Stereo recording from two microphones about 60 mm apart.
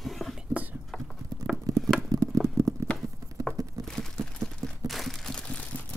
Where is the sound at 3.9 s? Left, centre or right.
Centre.